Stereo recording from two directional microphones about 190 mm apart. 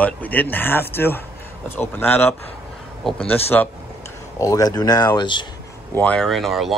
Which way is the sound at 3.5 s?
5° left (ahead or behind).